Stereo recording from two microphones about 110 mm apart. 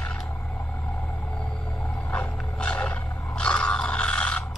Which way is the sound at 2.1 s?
10° left (ahead or behind).